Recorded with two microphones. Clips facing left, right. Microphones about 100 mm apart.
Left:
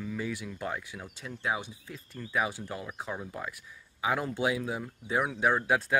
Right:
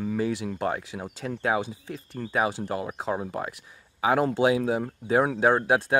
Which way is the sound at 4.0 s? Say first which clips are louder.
Right 8 dB; 65° right (ahead or behind).